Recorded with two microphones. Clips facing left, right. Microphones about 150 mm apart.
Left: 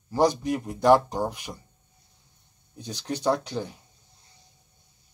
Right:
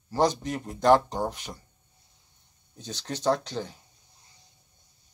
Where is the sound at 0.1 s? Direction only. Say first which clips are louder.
Left 2 dB; 10° left (ahead or behind).